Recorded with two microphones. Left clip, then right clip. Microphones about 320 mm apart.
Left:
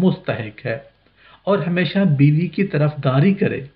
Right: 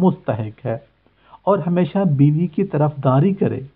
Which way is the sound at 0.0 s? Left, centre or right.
Right.